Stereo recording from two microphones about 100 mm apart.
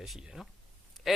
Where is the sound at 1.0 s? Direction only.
Centre (ahead or behind).